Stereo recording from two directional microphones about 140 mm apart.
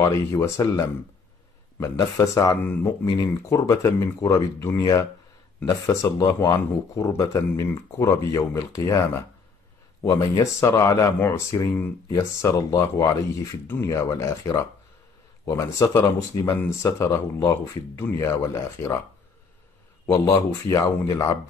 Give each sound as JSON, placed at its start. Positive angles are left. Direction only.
{"t": 0.0, "sound": "speech", "side_deg": 20}
{"t": 20.1, "sound": "speech", "side_deg": 20}